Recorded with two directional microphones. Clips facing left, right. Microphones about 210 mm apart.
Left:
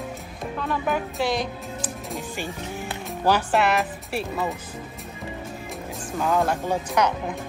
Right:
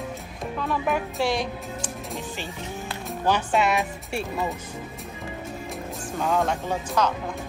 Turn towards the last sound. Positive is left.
turn(degrees=15)  # may be behind; listen again after turning